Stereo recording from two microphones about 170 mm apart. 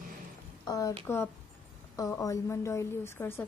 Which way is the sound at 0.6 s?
20° left (ahead or behind).